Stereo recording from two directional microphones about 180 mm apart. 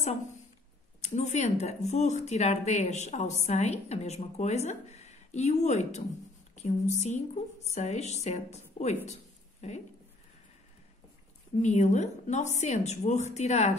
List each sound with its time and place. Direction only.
1.0 s a woman's voice: 40° left (ahead or behind)
9.0 s a sound: 40° left (ahead or behind)
11.6 s a woman's voice: 40° left (ahead or behind)